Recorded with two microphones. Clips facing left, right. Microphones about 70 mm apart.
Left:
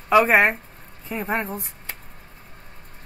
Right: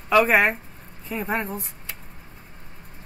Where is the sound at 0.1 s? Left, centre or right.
Centre.